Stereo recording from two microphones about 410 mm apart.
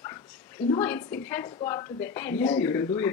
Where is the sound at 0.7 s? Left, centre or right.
Centre.